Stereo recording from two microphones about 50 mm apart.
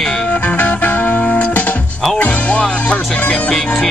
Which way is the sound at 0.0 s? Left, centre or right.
Centre.